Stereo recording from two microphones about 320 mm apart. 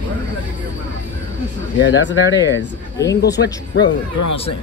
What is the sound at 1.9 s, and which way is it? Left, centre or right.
Speech, left.